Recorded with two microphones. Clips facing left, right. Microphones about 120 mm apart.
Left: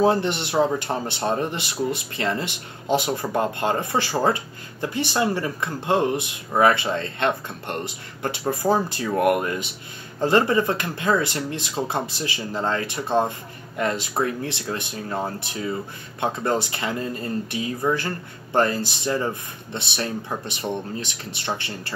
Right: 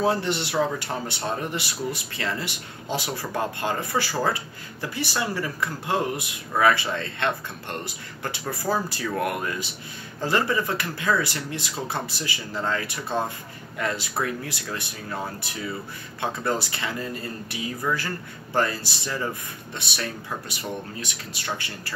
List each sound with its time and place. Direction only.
0.1 s speech: 20° left (ahead or behind)
21.4 s speech: 25° left (ahead or behind)